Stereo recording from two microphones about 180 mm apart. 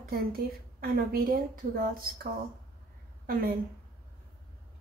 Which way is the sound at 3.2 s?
55° right (ahead or behind).